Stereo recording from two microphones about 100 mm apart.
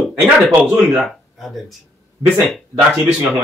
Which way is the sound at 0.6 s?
15° right (ahead or behind).